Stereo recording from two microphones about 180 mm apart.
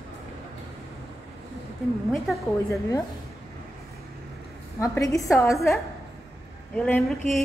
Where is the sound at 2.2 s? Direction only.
Centre (ahead or behind).